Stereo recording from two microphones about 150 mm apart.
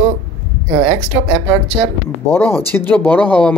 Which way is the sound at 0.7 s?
35° right (ahead or behind).